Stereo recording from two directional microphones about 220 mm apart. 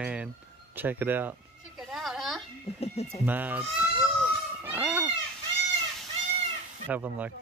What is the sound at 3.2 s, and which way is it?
Speech, 10° right (ahead or behind).